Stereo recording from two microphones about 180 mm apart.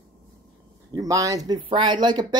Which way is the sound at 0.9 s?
20° right (ahead or behind).